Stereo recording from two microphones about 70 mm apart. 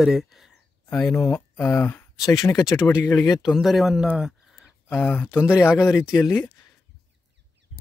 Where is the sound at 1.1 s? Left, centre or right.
Left.